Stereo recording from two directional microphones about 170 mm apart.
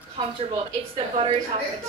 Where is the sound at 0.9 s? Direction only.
35° right (ahead or behind).